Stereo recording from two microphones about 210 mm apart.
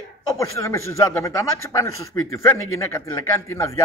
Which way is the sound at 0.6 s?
15° left (ahead or behind).